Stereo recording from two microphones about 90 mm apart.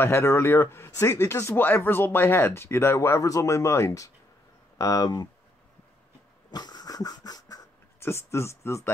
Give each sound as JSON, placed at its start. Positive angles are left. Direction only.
{"t": 0.0, "sound": "speech", "side_deg": 30}
{"t": 6.5, "sound": "dog", "side_deg": 50}
{"t": 8.0, "sound": "speech", "side_deg": 30}